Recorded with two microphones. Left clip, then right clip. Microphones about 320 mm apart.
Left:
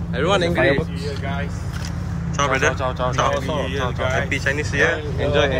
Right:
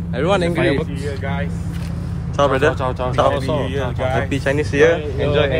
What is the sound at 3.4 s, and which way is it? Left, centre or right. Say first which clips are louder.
Speech: right 2 dB; right.